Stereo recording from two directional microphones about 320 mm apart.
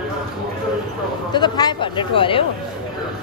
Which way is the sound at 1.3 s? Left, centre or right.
Centre.